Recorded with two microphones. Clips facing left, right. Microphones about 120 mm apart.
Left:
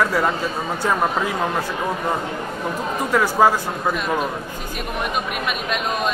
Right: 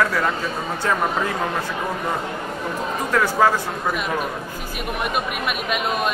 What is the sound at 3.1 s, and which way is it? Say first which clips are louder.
Speech: left 2 dB; 10° left (ahead or behind).